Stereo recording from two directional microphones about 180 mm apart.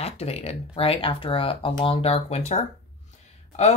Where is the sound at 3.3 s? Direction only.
35° left (ahead or behind).